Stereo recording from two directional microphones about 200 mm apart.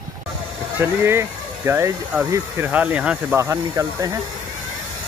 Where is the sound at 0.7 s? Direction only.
10° right (ahead or behind).